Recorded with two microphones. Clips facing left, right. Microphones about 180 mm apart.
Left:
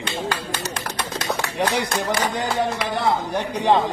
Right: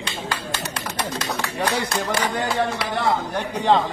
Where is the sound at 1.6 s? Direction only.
15° left (ahead or behind).